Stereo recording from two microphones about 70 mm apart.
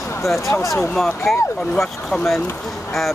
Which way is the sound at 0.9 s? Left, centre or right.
Centre.